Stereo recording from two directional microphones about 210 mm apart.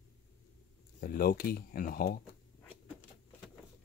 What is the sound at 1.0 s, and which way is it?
Speech, 45° left (ahead or behind).